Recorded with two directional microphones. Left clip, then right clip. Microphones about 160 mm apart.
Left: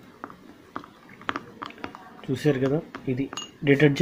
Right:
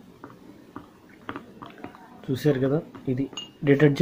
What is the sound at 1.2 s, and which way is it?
Chewing, 25° left (ahead or behind).